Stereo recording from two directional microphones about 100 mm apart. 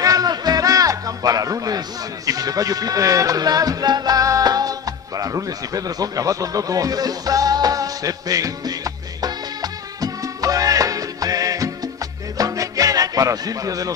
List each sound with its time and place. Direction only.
0.0 s music: 40° right (ahead or behind)